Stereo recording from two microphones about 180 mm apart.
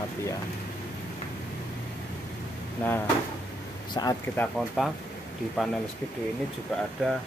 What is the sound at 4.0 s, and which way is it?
Speech, 20° left (ahead or behind).